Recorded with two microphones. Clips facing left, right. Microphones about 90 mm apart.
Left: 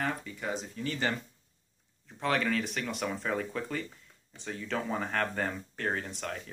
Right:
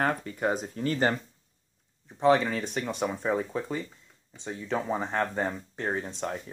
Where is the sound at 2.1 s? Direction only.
20° right (ahead or behind).